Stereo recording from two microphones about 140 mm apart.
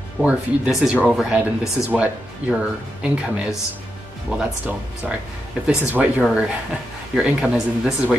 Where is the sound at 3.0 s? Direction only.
5° right (ahead or behind).